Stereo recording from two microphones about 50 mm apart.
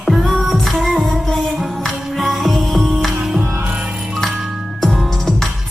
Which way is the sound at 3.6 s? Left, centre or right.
Right.